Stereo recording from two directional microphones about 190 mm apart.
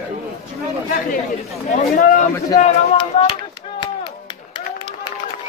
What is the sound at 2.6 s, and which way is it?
Speech, 30° left (ahead or behind).